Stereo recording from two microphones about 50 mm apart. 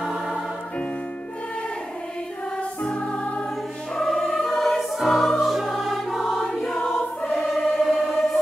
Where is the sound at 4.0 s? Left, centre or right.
Centre.